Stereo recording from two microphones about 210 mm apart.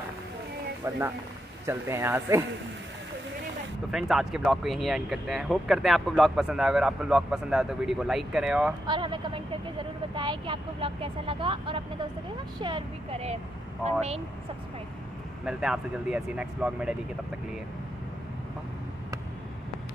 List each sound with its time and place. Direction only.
0.8 s speech: 10° right (ahead or behind)
3.9 s speech: centre (ahead or behind)
8.8 s speech: 20° right (ahead or behind)
15.4 s speech: 5° right (ahead or behind)